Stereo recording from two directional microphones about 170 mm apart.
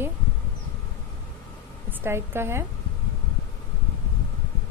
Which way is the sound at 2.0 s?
15° right (ahead or behind).